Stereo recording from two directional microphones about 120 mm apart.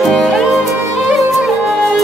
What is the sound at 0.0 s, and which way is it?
Music, centre (ahead or behind).